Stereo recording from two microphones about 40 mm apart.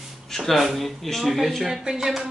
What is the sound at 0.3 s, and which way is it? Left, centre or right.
A man's voice, centre.